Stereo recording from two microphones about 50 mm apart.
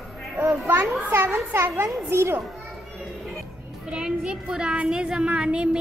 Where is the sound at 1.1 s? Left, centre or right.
Right.